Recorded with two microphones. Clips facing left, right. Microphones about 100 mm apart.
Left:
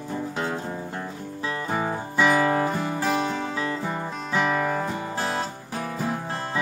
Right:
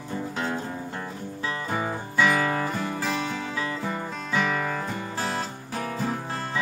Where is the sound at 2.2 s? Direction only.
20° left (ahead or behind).